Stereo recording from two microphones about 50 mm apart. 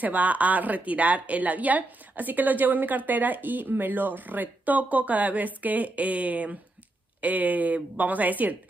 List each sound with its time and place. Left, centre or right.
0.0 s speech: right